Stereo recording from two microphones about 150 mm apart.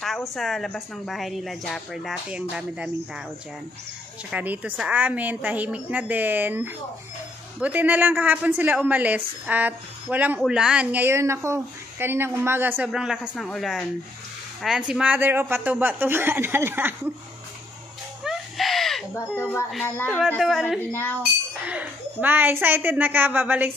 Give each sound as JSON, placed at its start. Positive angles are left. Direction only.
{"t": 0.0, "sound": "a woman's voice", "side_deg": 0}
{"t": 4.3, "sound": "a woman's voice", "side_deg": -10}
{"t": 18.2, "sound": "a sound", "side_deg": 0}
{"t": 19.1, "sound": "speech", "side_deg": 15}
{"t": 20.3, "sound": "a woman's voice", "side_deg": 0}
{"t": 20.9, "sound": "speech", "side_deg": 15}
{"t": 21.6, "sound": "a woman's voice", "side_deg": -10}